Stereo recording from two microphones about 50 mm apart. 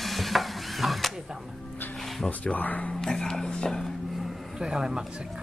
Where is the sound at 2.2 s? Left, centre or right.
Left.